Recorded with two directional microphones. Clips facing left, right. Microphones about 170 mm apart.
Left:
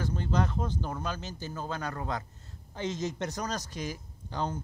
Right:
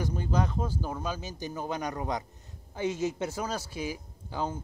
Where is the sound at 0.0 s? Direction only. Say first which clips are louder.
Even; 10° right (ahead or behind).